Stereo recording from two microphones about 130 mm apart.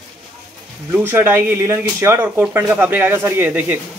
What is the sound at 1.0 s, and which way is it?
Speech, 15° right (ahead or behind).